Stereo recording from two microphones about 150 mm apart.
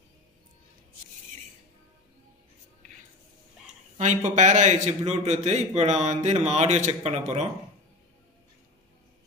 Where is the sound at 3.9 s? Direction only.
50° right (ahead or behind).